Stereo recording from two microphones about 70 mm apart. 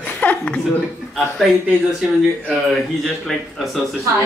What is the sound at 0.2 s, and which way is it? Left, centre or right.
Chuckle, centre.